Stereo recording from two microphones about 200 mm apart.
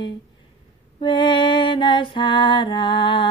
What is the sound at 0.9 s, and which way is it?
Music, 25° left (ahead or behind).